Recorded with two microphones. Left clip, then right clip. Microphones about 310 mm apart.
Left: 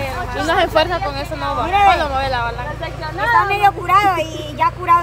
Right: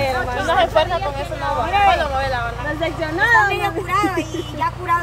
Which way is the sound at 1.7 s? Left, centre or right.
Left.